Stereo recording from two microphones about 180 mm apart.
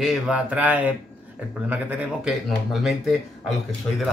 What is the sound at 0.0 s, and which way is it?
Speech, 5° right (ahead or behind).